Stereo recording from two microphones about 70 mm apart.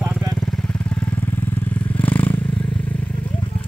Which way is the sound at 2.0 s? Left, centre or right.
Left.